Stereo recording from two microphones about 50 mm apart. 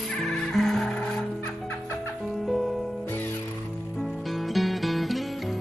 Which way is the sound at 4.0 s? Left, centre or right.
Centre.